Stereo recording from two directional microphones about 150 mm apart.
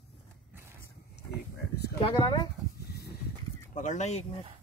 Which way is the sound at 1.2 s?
90° left.